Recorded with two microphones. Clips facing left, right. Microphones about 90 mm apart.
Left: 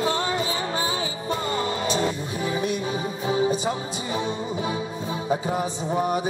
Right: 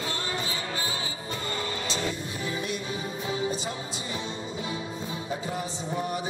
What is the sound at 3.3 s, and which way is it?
Music, 20° left (ahead or behind).